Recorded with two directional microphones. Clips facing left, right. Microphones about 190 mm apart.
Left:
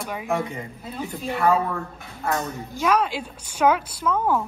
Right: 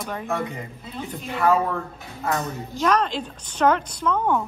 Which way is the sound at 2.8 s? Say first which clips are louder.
Even; 10° left (ahead or behind).